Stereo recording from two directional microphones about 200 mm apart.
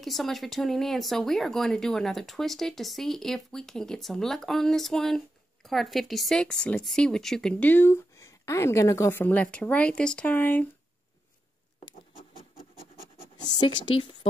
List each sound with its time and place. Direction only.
0.0 s speech: centre (ahead or behind)
13.4 s speech: 20° left (ahead or behind)